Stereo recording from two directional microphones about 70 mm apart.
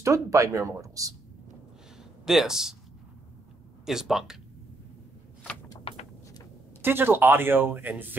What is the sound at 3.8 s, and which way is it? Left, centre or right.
Speech, centre.